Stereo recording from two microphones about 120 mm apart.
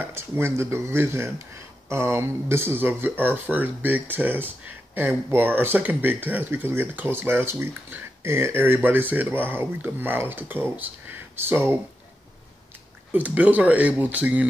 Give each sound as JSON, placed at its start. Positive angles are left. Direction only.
{"t": 0.0, "sound": "speech", "side_deg": -20}
{"t": 13.1, "sound": "speech", "side_deg": -15}